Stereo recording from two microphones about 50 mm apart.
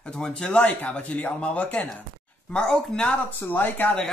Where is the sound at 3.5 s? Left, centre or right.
Left.